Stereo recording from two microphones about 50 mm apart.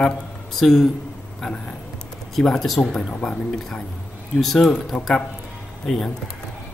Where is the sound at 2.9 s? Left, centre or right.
Centre.